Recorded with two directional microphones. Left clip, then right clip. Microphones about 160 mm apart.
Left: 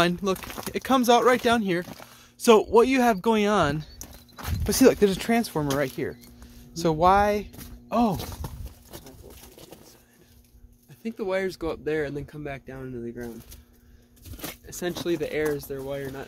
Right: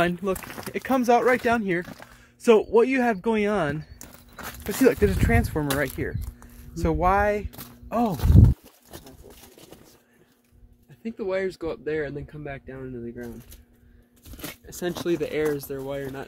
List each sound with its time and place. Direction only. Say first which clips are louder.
0.0 s speech: even; 25° left (ahead or behind)
0.5 s speech: left 1 dB; centre (ahead or behind)
0.7 s speech: left 1 dB; 25° left (ahead or behind)
11.0 s speech: even; 45° left (ahead or behind)
14.4 s a sound: right 1 dB; 10° right (ahead or behind)
15.0 s speech: right 1 dB; 30° right (ahead or behind)
15.5 s speech: right 1 dB; 60° right (ahead or behind)